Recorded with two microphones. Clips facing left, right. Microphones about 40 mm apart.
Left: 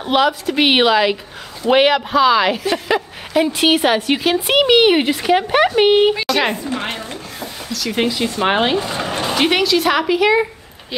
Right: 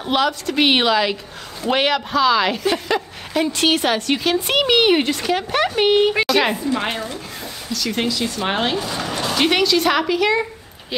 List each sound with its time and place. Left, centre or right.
0.0 s speech: centre
6.2 s a woman's voice: centre
7.9 s speech: centre
9.4 s speech: centre